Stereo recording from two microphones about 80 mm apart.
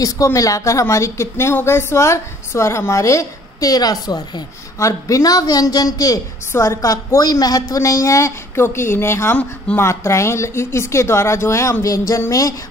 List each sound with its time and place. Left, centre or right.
0.0 s a woman's voice: left
4.7 s speech: left
6.5 s a woman's voice: left
7.2 s a woman's voice: left